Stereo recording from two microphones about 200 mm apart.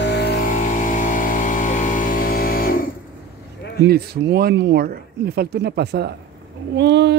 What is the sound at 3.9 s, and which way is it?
Speech, 50° right (ahead or behind).